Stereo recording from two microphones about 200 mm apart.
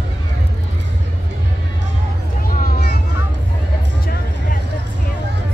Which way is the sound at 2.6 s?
50° left (ahead or behind).